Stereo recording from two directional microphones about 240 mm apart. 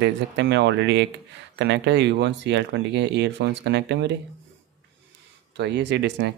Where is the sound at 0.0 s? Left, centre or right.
Right.